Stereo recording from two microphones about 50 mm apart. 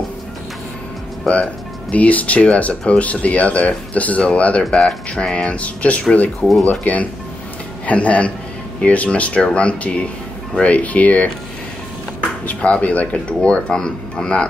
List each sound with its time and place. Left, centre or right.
1.2 s speech: left
12.4 s speech: left